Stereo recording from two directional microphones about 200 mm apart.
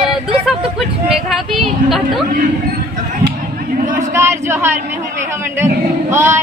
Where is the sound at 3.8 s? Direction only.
40° right (ahead or behind).